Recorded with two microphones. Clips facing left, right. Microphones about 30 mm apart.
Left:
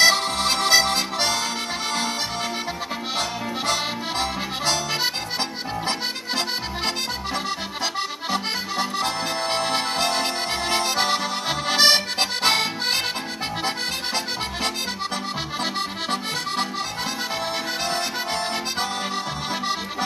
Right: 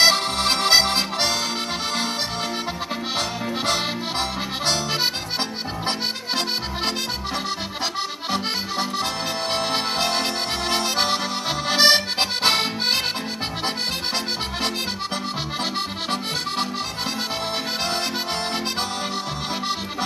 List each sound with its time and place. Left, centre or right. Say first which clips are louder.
0.0 s music: even; centre
3.2 s accordion: even; centre
7.8 s accordion: left 1 dB; centre
13.7 s accordion: right 2 dB; centre